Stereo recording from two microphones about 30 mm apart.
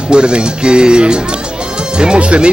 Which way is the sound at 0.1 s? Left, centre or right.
Right.